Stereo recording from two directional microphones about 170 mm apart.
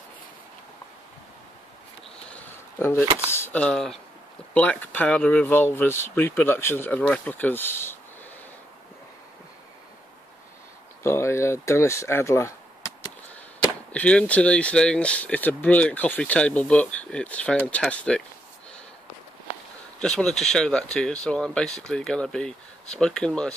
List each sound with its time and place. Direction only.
2.2 s a sound: 10° left (ahead or behind)
3.3 s speech: 15° left (ahead or behind)
11.0 s speech: 15° left (ahead or behind)
20.0 s speech: 5° left (ahead or behind)